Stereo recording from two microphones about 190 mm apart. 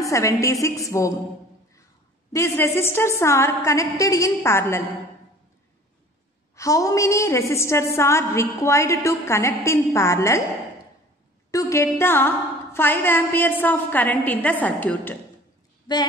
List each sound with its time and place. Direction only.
0.0 s a woman's voice: 15° left (ahead or behind)
2.3 s a woman's voice: 15° left (ahead or behind)
6.5 s a woman's voice: 15° left (ahead or behind)
11.5 s a woman's voice: 15° left (ahead or behind)
15.9 s speech: 20° left (ahead or behind)